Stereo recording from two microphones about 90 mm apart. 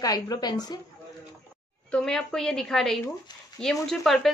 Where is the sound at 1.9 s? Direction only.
5° left (ahead or behind).